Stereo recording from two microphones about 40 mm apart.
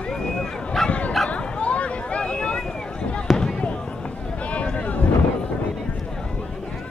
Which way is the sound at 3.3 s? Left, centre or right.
Centre.